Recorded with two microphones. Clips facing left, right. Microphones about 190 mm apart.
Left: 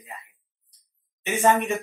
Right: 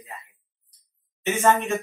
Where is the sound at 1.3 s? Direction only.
15° left (ahead or behind).